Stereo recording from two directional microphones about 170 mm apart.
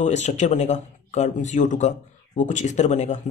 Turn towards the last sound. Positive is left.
turn(degrees=45)  # may be behind; listen again after turning